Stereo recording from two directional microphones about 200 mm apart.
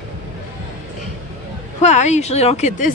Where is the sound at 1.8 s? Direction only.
35° left (ahead or behind).